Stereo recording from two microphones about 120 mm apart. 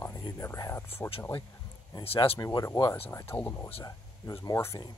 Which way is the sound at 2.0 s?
50° left (ahead or behind).